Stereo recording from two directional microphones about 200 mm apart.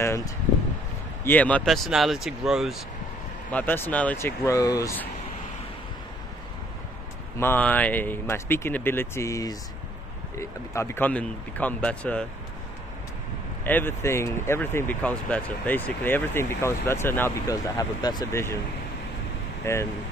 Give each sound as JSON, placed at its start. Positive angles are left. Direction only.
{"t": 0.0, "sound": "a sound", "side_deg": 15}
{"t": 1.2, "sound": "speech", "side_deg": 10}
{"t": 3.5, "sound": "speech", "side_deg": 10}
{"t": 7.3, "sound": "speech", "side_deg": 10}
{"t": 13.7, "sound": "speech", "side_deg": 10}
{"t": 19.6, "sound": "speech", "side_deg": 15}